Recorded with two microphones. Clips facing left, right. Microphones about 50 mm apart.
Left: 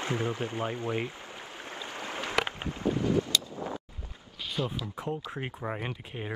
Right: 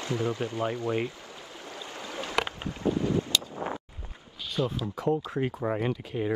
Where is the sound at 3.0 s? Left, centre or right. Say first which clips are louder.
Even; right.